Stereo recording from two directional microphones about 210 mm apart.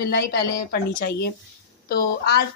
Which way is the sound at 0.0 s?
50° left (ahead or behind).